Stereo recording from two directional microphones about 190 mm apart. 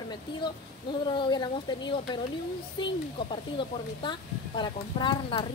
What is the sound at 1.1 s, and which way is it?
Speech, 25° left (ahead or behind).